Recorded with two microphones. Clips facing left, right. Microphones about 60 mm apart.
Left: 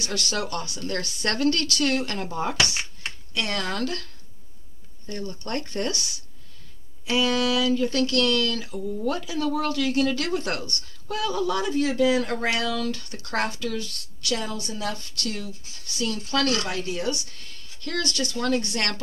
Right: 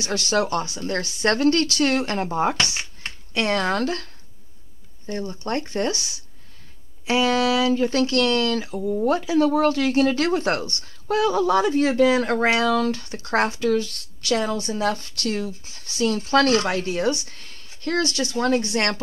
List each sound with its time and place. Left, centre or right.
0.0 s speech: right